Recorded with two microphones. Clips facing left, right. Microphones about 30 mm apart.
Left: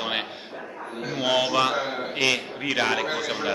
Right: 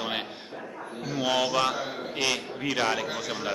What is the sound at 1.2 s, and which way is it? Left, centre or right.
A man's voice, left.